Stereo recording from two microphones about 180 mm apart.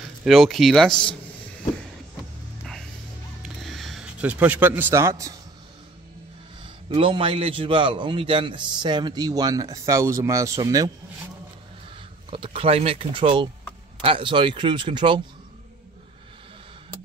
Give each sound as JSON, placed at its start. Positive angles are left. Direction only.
{"t": 0.2, "sound": "speech", "side_deg": 0}
{"t": 3.4, "sound": "a sound", "side_deg": 0}
{"t": 6.6, "sound": "a man's voice", "side_deg": -30}
{"t": 12.3, "sound": "a man's voice", "side_deg": -30}